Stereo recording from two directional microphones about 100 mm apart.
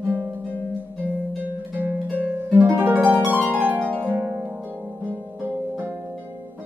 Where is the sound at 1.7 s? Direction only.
20° right (ahead or behind).